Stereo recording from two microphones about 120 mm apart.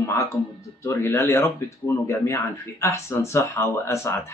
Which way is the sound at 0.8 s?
20° left (ahead or behind).